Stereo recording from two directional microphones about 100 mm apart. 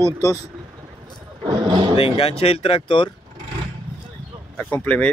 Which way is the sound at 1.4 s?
50° right (ahead or behind).